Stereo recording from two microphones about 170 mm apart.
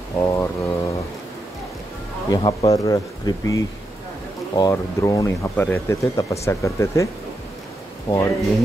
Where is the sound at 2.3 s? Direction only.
30° left (ahead or behind).